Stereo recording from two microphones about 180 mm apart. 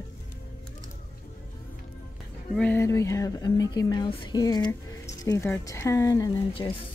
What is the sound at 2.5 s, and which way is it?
A woman's voice, 10° left (ahead or behind).